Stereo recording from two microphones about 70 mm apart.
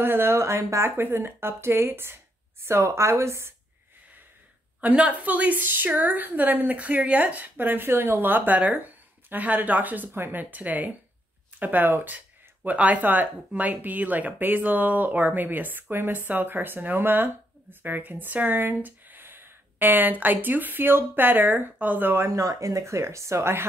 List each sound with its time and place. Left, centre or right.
0.0 s speech: right
0.8 s speech: right
4.8 s speech: right
22.1 s speech: right
22.4 s speech: right